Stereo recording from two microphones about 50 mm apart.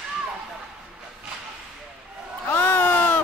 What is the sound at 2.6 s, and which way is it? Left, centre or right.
Bleat, left.